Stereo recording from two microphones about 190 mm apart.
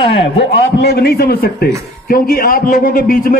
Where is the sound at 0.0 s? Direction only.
70° left (ahead or behind).